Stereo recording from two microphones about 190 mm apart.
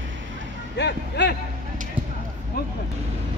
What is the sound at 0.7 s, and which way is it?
Speech, 65° left (ahead or behind).